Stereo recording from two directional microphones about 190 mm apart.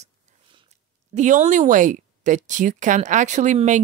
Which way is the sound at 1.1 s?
40° right (ahead or behind).